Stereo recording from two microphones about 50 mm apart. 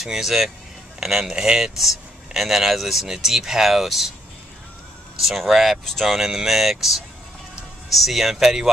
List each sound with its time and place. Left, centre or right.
0.0 s a man's voice: centre
5.2 s speech: centre